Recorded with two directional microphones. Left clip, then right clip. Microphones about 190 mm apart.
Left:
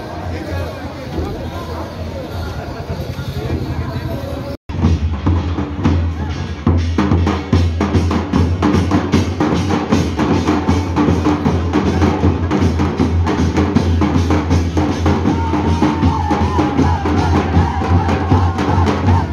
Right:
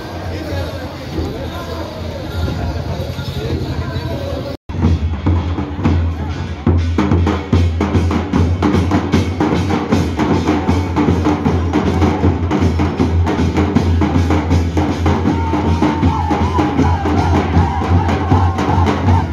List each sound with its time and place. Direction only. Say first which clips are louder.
7.0 s music: right 1 dB; 15° left (ahead or behind)